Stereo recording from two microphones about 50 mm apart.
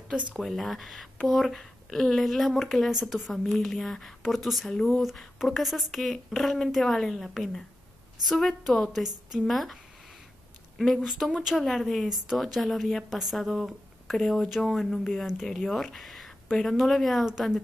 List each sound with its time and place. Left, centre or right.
0.1 s speech: right
0.4 s a woman's voice: centre
11.0 s speech: centre
11.5 s a woman's voice: centre